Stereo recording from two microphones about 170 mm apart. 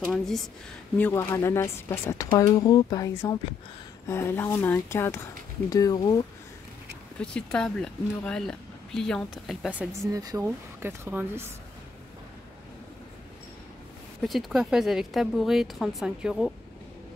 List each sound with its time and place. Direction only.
0.0 s speech: 5° left (ahead or behind); by 6.2 s 20° left (ahead or behind)
7.2 s speech: 5° left (ahead or behind)
10.1 s speech: 20° right (ahead or behind)
14.2 s speech: centre (ahead or behind)